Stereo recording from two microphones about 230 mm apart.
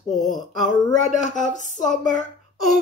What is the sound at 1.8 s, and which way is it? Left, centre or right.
Speech, centre.